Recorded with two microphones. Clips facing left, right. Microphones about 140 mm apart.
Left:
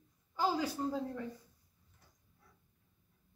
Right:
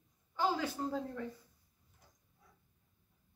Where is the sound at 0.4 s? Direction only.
10° left (ahead or behind).